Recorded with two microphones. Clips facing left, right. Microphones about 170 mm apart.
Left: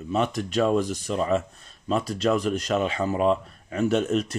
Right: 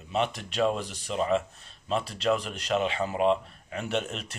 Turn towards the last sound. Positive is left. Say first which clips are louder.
# left 9 dB
turn(degrees=40)  # may be behind; listen again after turning